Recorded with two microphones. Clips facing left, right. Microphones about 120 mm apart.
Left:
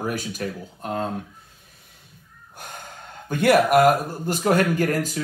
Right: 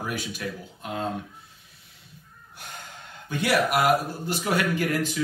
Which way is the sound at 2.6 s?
50° left (ahead or behind).